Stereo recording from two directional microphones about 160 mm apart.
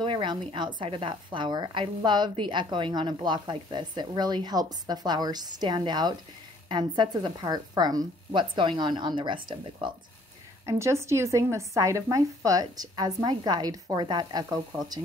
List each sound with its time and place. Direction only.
0.0 s a woman's voice: 30° right (ahead or behind)
10.6 s a woman's voice: 20° right (ahead or behind)